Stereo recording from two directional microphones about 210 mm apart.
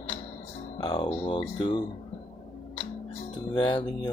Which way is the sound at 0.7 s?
20° left (ahead or behind).